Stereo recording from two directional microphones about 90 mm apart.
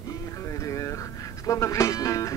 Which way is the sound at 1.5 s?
35° left (ahead or behind).